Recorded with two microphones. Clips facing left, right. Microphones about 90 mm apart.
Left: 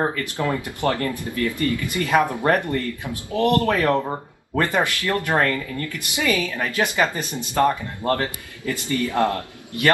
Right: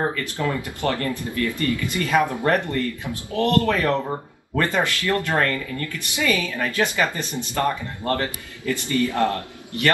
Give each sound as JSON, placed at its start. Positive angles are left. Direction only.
{"t": 0.0, "sound": "a woman's voice", "side_deg": 20}